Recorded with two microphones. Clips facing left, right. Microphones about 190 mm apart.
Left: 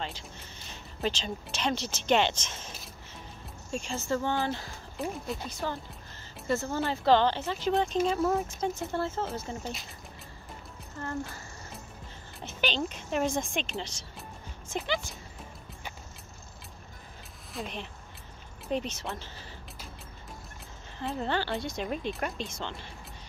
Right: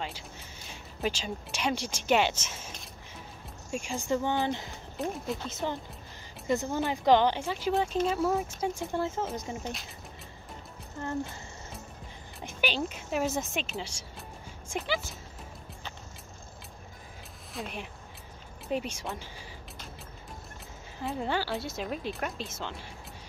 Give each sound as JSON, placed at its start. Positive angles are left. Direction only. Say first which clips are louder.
{"t": 1.0, "sound": "speech", "louder": "even", "side_deg": -10}
{"t": 3.7, "sound": "speech", "louder": "right 1 dB", "side_deg": -10}
{"t": 4.9, "sound": "a woman's voice", "louder": "right 1 dB", "side_deg": 0}
{"t": 5.5, "sound": "a woman's voice", "louder": "right 1 dB", "side_deg": -20}
{"t": 11.0, "sound": "speech", "louder": "right 2 dB", "side_deg": -15}
{"t": 12.4, "sound": "a woman's voice", "louder": "even", "side_deg": -10}
{"t": 17.6, "sound": "speech", "louder": "left 1 dB", "side_deg": -10}
{"t": 21.0, "sound": "a woman's voice", "louder": "even", "side_deg": -10}